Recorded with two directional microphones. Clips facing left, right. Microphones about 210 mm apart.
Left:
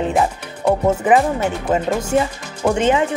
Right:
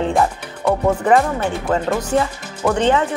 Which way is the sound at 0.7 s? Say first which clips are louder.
Left 1 dB; 10° left (ahead or behind).